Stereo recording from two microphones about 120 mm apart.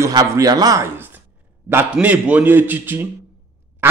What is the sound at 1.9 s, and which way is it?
Speech, 10° right (ahead or behind).